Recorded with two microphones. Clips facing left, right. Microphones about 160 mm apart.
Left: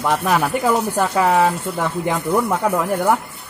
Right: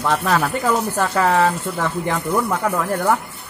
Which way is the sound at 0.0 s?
15° left (ahead or behind).